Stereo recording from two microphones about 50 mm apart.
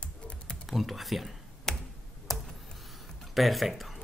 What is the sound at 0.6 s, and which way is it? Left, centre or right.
Speech, centre.